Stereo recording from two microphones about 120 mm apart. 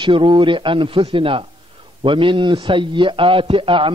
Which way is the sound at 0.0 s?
45° right (ahead or behind).